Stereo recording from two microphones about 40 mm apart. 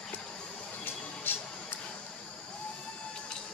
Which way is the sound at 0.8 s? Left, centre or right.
Left.